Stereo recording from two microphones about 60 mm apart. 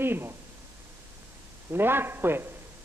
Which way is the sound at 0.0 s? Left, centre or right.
Right.